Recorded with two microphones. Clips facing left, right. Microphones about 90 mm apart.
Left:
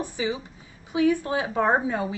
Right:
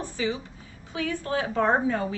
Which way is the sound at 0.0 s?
15° left (ahead or behind).